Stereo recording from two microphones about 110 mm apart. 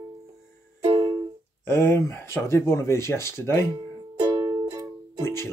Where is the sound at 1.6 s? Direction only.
25° left (ahead or behind).